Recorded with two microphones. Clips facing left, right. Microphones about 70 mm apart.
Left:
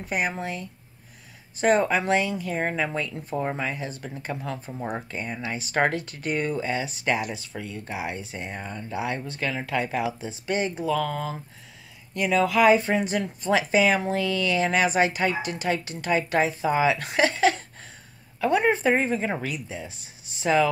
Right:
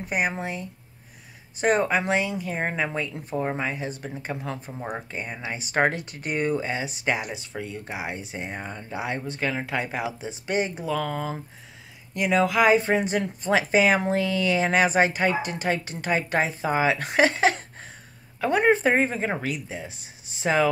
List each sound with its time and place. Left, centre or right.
0.1 s speech: centre
3.5 s speech: right
4.7 s speech: centre; by 20.7 s right